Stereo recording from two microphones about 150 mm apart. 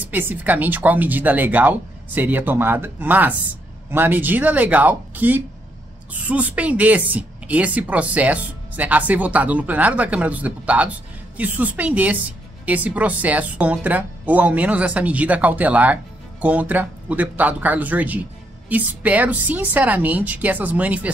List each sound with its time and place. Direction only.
0.0 s speech: 10° right (ahead or behind)